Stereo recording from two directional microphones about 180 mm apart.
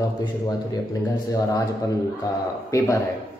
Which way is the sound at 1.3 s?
20° left (ahead or behind).